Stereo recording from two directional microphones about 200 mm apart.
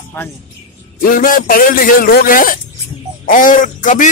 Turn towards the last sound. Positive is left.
turn(degrees=40)  # may be behind; listen again after turning